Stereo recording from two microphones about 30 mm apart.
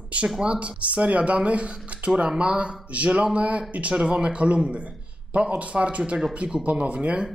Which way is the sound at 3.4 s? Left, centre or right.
Right.